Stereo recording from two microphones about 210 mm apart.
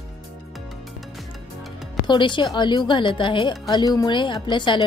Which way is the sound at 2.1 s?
20° left (ahead or behind).